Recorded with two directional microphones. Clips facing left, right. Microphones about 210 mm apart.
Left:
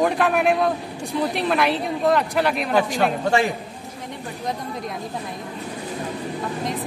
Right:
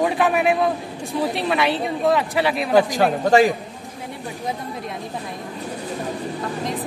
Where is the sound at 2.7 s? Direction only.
40° right (ahead or behind).